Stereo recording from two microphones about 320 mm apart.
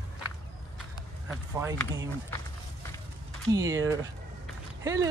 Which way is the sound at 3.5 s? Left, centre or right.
Centre.